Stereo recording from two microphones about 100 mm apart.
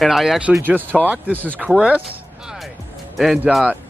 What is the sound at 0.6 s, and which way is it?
Speech, 20° right (ahead or behind).